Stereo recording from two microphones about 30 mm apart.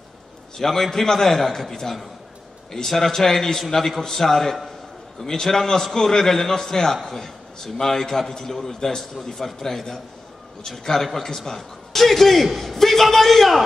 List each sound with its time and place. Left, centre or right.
0.6 s a man's voice: centre
5.5 s a man's voice: centre
12.7 s a sound: centre